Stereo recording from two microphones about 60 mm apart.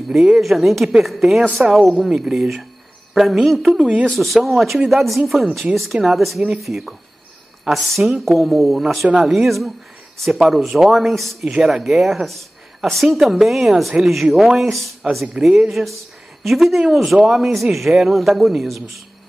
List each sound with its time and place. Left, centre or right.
0.4 s a man's voice: centre
4.1 s speech: centre
15.3 s a man's voice: centre